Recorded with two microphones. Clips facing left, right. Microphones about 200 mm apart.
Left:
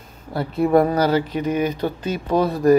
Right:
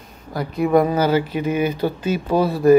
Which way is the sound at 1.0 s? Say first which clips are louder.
Right 1 dB; 5° right (ahead or behind).